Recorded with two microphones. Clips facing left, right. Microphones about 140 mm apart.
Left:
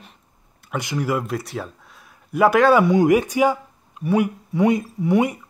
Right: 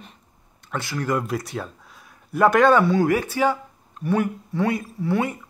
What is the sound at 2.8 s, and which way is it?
Speech, 15° left (ahead or behind).